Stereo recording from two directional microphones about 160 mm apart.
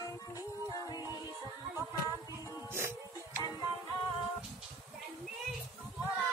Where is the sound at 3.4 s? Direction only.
25° left (ahead or behind).